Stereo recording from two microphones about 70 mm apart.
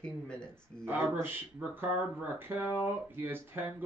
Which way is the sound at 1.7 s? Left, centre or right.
Right.